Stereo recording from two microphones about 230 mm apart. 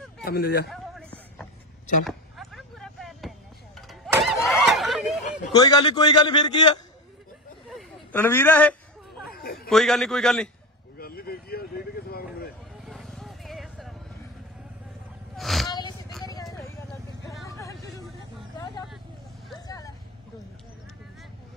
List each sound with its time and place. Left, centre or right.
0.2 s speech: left
2.0 s a sound: centre
4.1 s snicker: centre
5.5 s a man's voice: centre
7.7 s a sound: centre
9.2 s a sound: left
9.7 s a man's voice: centre
11.0 s vehicle: left
12.8 s vehicle: centre
15.3 s a sound: centre
17.5 s vehicle: centre
19.6 s vehicle: centre